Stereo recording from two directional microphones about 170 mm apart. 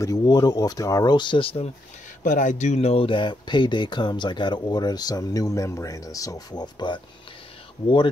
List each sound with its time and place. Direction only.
0.0 s speech: 25° left (ahead or behind)
2.2 s speech: 50° left (ahead or behind); by 7.0 s 25° left (ahead or behind)